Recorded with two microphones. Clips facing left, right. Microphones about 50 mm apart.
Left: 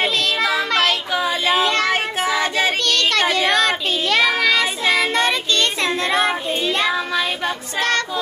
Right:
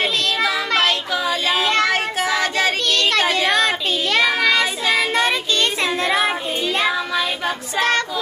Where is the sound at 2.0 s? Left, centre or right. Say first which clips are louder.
Even; centre.